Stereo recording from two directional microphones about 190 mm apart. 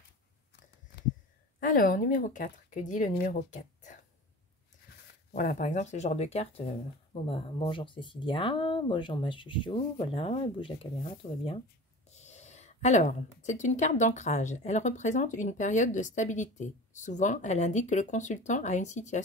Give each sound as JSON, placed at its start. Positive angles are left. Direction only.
{"t": 1.6, "sound": "speech", "side_deg": 45}
{"t": 5.3, "sound": "a woman's voice", "side_deg": 40}